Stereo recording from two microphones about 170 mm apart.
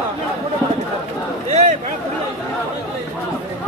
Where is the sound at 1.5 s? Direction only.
40° right (ahead or behind).